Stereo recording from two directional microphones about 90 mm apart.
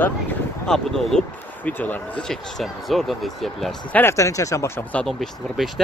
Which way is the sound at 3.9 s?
20° left (ahead or behind).